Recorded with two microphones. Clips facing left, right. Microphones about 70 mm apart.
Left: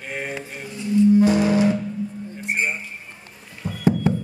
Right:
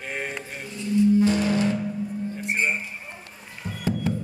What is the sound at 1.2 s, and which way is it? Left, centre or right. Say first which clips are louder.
Music: left 4 dB; centre.